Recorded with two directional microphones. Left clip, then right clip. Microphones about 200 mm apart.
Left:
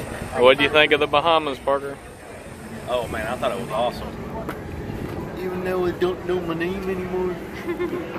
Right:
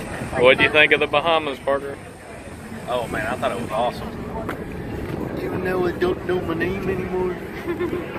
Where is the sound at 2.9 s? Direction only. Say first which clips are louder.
Right 1 dB; 5° left (ahead or behind).